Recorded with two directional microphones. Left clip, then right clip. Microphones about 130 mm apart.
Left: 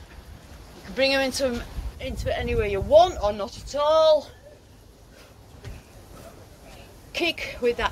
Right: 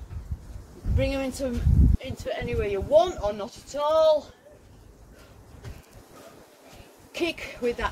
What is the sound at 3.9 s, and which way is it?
Speech, 10° right (ahead or behind).